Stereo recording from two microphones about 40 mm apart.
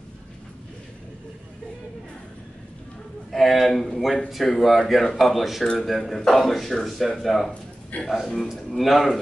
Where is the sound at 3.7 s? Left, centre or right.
Centre.